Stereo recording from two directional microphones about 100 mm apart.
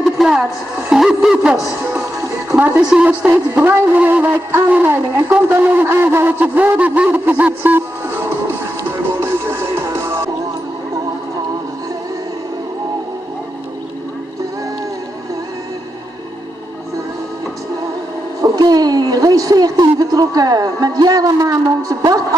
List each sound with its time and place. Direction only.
0.0 s speech: 5° right (ahead or behind)
2.8 s speech: 10° right (ahead or behind)
5.1 s a sound: 20° right (ahead or behind)
18.4 s speech: 40° right (ahead or behind)